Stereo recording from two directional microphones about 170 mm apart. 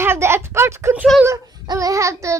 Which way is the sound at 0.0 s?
15° right (ahead or behind).